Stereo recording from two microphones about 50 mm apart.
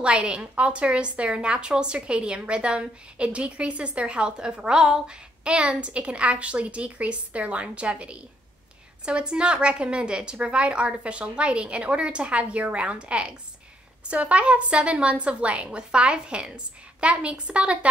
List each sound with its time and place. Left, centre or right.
0.0 s a woman's voice: right